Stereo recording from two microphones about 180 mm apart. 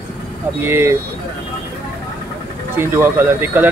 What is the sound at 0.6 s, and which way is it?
Speech, 15° right (ahead or behind).